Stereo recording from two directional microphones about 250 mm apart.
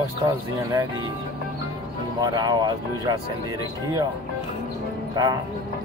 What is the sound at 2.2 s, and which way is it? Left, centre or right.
Speech, centre.